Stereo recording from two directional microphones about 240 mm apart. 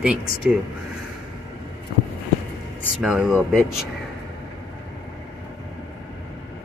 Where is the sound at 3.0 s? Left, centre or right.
Centre.